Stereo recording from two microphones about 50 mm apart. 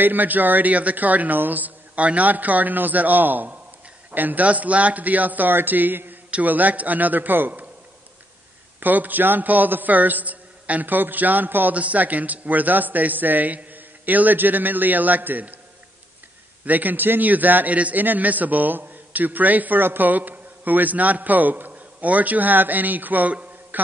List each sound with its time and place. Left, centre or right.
0.0 s a man's voice: right
8.7 s a man's voice: right
16.6 s a man's voice: right
23.7 s a sound: right